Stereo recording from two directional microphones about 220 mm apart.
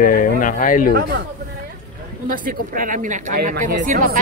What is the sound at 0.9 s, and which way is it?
Speech, 50° right (ahead or behind).